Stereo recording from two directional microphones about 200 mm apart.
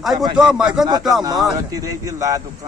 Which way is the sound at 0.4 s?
5° right (ahead or behind).